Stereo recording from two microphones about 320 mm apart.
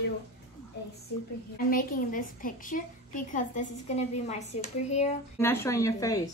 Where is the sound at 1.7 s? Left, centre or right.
Left.